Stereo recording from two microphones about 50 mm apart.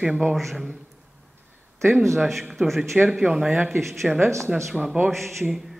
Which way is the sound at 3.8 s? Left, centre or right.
Centre.